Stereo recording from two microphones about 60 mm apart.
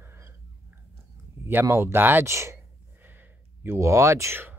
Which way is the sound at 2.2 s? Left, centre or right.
Right.